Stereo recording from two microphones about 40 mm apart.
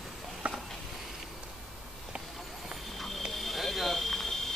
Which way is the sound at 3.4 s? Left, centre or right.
Centre.